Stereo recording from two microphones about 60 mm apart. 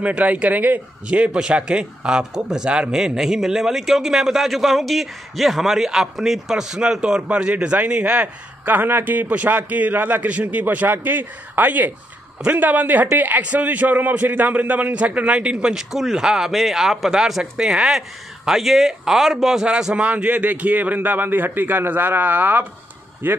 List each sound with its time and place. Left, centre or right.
0.0 s a man's voice: right